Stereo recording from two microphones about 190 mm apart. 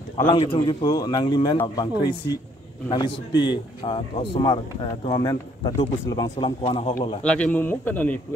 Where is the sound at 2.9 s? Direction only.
25° left (ahead or behind).